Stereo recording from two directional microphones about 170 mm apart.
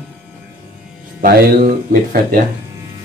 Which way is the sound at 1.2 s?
60° right (ahead or behind).